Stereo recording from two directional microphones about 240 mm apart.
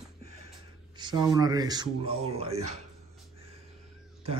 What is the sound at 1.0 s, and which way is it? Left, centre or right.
Speech, centre.